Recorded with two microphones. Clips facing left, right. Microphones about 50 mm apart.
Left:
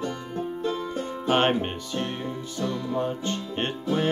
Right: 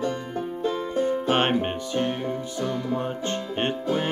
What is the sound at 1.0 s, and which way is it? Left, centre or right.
Music, right.